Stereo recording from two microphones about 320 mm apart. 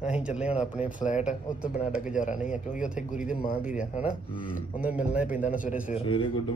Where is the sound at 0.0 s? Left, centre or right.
Centre.